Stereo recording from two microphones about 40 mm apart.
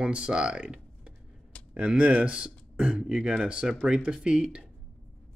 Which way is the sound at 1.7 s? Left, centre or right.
Right.